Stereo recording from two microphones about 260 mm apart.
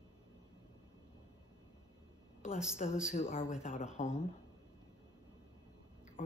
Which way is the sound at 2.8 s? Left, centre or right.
Left.